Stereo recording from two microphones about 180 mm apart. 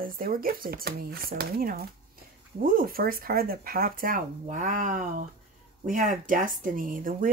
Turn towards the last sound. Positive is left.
turn(degrees=-50)  # may be behind; listen again after turning